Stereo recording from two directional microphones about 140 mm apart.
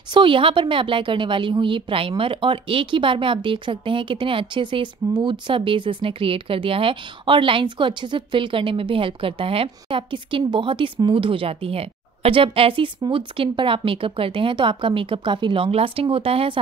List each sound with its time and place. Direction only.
0.1 s a woman's voice: 40° right (ahead or behind)